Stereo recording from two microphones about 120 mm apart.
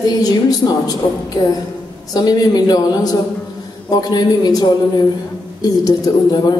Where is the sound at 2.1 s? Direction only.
35° left (ahead or behind).